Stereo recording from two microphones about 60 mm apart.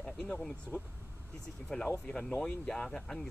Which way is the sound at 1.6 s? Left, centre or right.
Centre.